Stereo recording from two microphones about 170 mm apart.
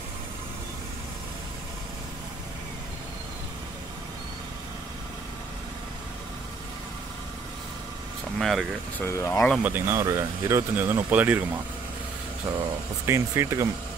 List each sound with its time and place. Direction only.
8.4 s speech: centre (ahead or behind)
9.0 s speech: 15° left (ahead or behind)
9.6 s speech: 10° right (ahead or behind)
13.0 s speech: 15° right (ahead or behind)